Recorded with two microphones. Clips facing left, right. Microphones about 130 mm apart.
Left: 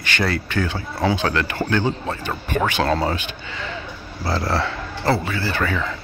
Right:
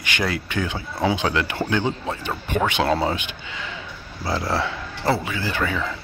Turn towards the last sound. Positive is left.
turn(degrees=-10)  # may be behind; listen again after turning